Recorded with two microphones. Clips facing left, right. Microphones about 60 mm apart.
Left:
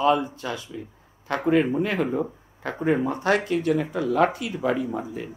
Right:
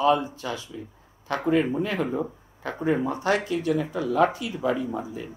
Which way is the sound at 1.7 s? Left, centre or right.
Left.